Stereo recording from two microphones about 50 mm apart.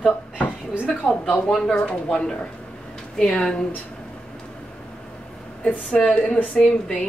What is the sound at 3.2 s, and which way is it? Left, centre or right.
Speech, centre.